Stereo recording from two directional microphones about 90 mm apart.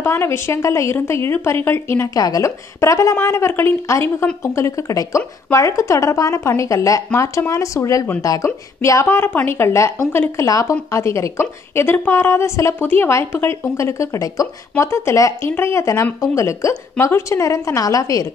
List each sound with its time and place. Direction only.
0.0 s a woman's voice: 25° left (ahead or behind)
2.1 s a woman's voice: 40° left (ahead or behind)
9.0 s a woman's voice: 20° left (ahead or behind); by 18.2 s 40° left (ahead or behind)